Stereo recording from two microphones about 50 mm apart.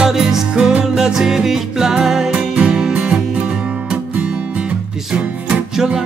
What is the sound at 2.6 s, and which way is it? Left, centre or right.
Music, right.